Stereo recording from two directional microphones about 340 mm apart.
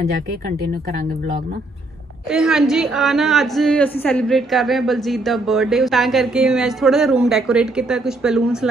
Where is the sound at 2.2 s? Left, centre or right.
Centre.